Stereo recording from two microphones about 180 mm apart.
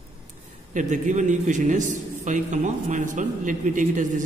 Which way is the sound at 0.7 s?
45° right (ahead or behind).